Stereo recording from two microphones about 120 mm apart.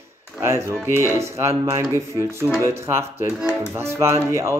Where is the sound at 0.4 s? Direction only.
25° right (ahead or behind).